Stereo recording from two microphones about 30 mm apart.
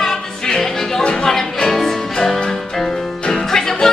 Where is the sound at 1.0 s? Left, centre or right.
Left.